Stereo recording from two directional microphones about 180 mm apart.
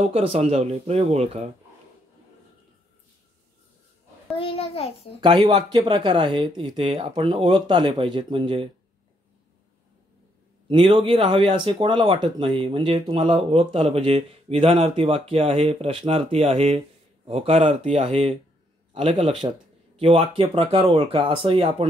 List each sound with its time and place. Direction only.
0.0 s speech: 35° right (ahead or behind)
4.4 s a sound: 30° left (ahead or behind)
5.4 s speech: 25° right (ahead or behind)
10.7 s speech: 30° right (ahead or behind)